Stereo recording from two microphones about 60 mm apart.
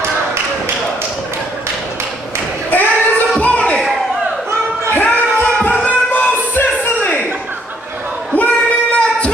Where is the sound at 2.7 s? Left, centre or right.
Left.